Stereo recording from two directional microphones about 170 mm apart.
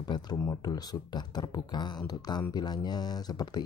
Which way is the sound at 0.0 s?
25° left (ahead or behind).